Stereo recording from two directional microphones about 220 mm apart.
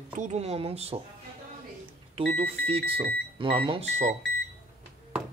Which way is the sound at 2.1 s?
25° right (ahead or behind).